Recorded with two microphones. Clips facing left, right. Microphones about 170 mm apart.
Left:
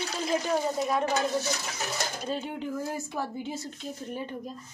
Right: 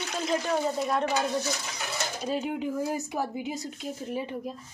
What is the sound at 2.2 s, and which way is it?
Speech, 10° right (ahead or behind).